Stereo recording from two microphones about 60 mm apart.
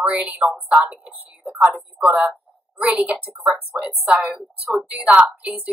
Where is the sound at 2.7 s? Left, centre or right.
Right.